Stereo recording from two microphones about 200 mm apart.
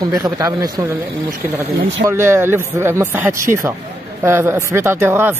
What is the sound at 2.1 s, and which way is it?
Speech, 15° right (ahead or behind).